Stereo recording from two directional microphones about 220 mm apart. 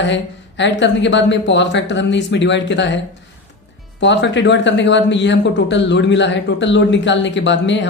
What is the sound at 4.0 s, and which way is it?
Speech, 55° left (ahead or behind).